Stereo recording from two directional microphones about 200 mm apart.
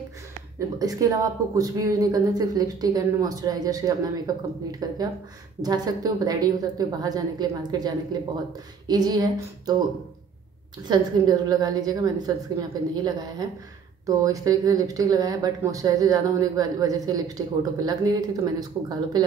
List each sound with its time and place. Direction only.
0.7 s speech: 15° right (ahead or behind)
10.9 s speech: 20° right (ahead or behind)